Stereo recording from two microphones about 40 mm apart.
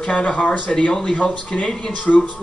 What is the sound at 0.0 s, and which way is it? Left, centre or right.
Speech, left.